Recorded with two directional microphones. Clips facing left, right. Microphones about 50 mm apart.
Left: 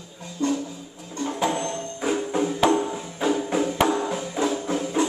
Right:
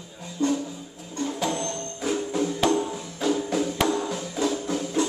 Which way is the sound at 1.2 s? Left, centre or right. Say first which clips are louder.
Left 3 dB; left.